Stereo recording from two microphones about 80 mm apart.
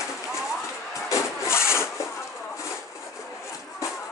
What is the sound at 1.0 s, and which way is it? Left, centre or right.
Sawing, left.